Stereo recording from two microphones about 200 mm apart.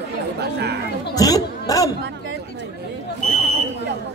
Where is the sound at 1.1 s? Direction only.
20° left (ahead or behind).